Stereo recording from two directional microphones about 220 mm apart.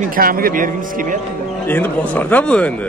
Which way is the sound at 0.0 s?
40° right (ahead or behind).